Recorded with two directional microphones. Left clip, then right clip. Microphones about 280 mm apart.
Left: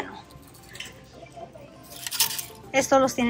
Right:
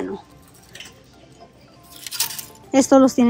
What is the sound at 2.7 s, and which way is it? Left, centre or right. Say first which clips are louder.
Speech: right 6 dB; right.